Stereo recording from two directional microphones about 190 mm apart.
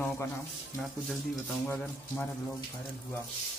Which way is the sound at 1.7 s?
10° left (ahead or behind).